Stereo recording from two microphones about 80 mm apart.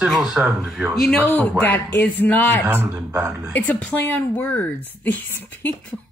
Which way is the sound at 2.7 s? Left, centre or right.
Right.